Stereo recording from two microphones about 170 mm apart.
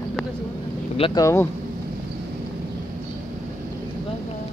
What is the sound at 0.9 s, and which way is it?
Speech, 30° left (ahead or behind).